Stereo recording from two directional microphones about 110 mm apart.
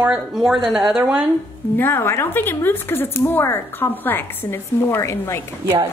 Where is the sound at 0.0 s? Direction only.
5° right (ahead or behind).